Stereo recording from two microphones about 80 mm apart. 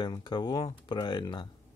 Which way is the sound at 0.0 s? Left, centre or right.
Left.